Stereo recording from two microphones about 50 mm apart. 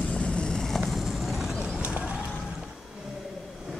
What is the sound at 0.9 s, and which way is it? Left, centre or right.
Vehicle, centre.